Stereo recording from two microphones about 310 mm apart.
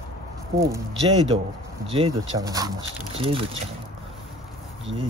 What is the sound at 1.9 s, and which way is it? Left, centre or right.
Speech, centre.